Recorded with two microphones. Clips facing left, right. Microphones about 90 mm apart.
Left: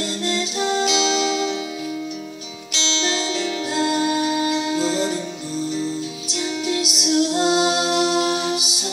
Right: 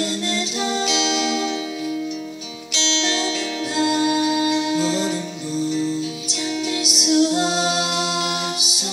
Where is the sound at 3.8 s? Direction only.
35° left (ahead or behind).